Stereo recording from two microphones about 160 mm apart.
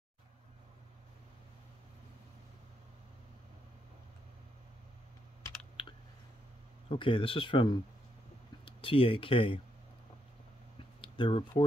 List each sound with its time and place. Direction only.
6.9 s speech: 35° left (ahead or behind)
11.0 s speech: 30° left (ahead or behind)